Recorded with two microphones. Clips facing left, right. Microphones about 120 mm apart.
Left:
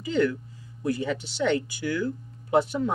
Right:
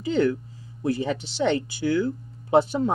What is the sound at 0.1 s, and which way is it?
Speech, 30° right (ahead or behind).